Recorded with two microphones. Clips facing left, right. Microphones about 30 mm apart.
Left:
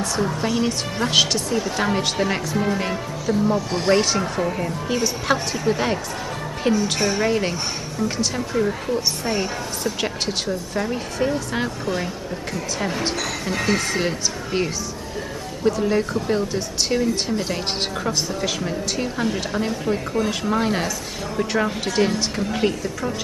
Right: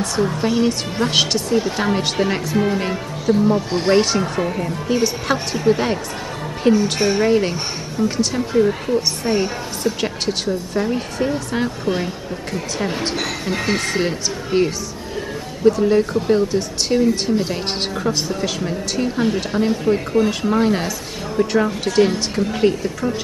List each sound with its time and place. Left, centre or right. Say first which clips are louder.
0.0 s a woman's voice: right 3 dB; centre
13.1 s a woman's voice: right 2 dB; centre